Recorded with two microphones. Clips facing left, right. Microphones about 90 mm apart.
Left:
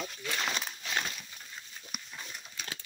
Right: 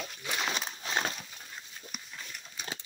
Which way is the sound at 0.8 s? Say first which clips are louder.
Right 2 dB; 30° right (ahead or behind).